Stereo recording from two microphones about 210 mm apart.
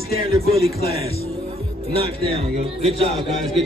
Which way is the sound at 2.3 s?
30° right (ahead or behind).